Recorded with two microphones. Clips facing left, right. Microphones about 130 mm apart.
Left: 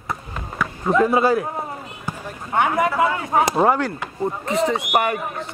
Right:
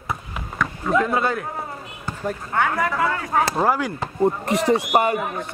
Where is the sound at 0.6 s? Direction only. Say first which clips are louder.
Even; 5° left (ahead or behind).